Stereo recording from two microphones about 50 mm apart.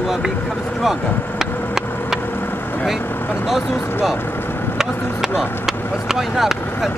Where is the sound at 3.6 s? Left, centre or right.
Left.